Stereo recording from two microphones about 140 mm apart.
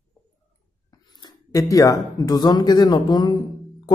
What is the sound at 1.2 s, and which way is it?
Speech, 25° left (ahead or behind).